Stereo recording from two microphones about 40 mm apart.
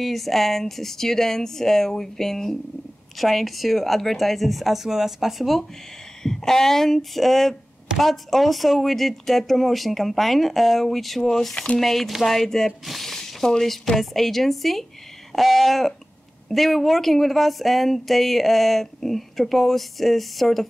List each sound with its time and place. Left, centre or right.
0.0 s speech: centre
6.2 s speech: centre
11.5 s speech: left
11.8 s speech: centre